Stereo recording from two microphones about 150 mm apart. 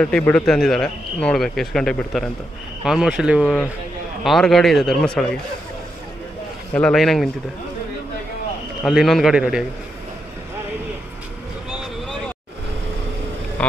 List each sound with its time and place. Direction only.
0.0 s speech: 5° left (ahead or behind)
6.7 s speech: 5° left (ahead or behind)
8.8 s speech: centre (ahead or behind)
13.6 s vehicle: 10° left (ahead or behind)